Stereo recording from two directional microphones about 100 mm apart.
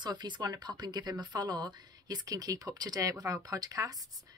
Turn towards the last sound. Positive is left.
turn(degrees=-40)  # may be behind; listen again after turning